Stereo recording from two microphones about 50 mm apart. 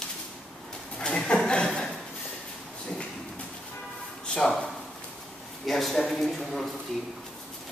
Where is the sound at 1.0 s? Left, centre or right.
Centre.